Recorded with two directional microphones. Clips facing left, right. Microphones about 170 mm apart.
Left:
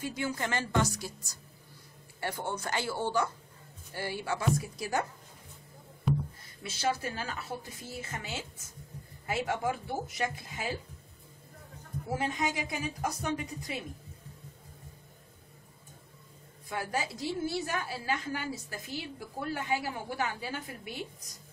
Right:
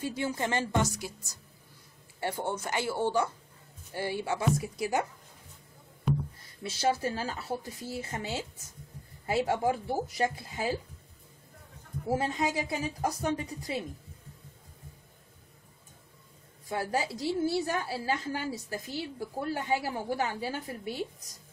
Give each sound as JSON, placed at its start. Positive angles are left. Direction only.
{"t": 0.0, "sound": "a woman's voice", "side_deg": -30}
{"t": 2.1, "sound": "a woman's voice", "side_deg": -25}
{"t": 6.6, "sound": "a woman's voice", "side_deg": -35}
{"t": 12.1, "sound": "a woman's voice", "side_deg": -30}
{"t": 16.6, "sound": "a woman's voice", "side_deg": -30}